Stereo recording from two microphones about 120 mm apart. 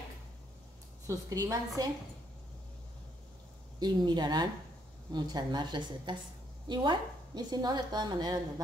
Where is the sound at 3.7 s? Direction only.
35° right (ahead or behind).